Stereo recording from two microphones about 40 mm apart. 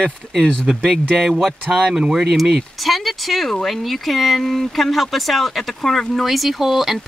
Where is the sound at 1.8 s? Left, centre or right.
Right.